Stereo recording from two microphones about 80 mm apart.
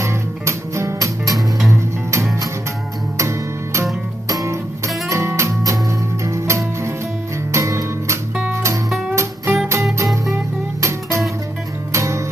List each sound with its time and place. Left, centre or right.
0.0 s music: right
1.7 s music: right